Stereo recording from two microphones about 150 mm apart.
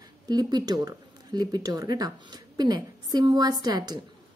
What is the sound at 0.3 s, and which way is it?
A woman's voice, 25° right (ahead or behind).